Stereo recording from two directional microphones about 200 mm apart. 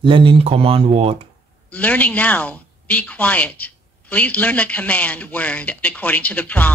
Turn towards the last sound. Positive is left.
turn(degrees=10)  # may be behind; listen again after turning